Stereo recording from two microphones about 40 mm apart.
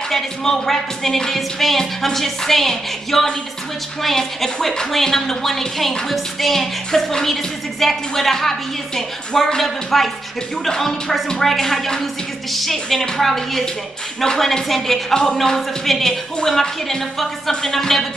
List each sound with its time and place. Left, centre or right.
0.1 s a woman's voice: centre
6.9 s a woman's voice: centre